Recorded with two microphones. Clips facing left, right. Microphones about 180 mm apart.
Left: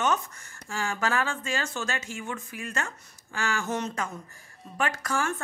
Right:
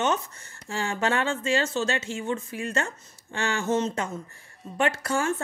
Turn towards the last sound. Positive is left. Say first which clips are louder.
# right 4 dB
turn(degrees=-30)  # may be behind; listen again after turning